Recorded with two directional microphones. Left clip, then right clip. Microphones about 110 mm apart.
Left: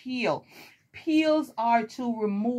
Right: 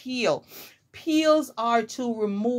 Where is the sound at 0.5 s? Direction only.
25° right (ahead or behind).